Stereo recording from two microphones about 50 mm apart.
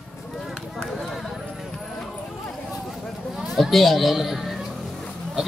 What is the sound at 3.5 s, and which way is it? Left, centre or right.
Speech, centre.